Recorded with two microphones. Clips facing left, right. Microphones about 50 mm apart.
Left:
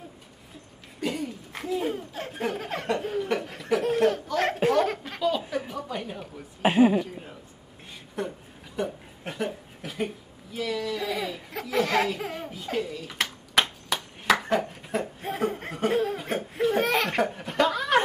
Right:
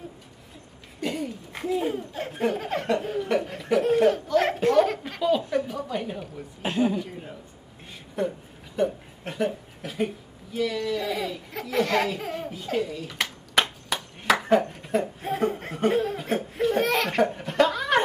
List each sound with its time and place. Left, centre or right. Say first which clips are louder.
1.0 s laughter: right 1 dB; centre
5.7 s a woman's voice: right 3 dB; centre
6.6 s speech: left 5 dB; left
8.2 s a sound: right 5 dB; centre